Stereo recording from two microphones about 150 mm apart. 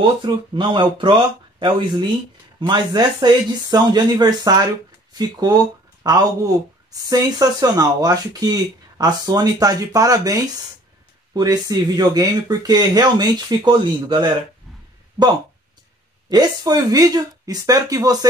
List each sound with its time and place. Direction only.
0.0 s speech: 30° right (ahead or behind)
16.3 s speech: 25° right (ahead or behind)